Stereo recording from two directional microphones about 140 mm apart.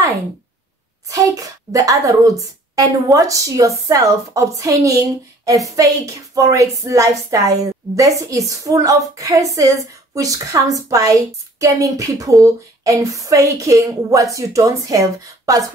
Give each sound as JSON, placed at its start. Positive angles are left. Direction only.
{"t": 1.0, "sound": "speech", "side_deg": -25}